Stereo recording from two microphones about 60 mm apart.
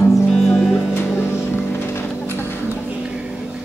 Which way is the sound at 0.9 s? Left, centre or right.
Left.